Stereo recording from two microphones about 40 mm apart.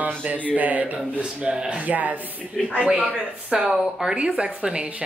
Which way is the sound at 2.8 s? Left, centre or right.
Right.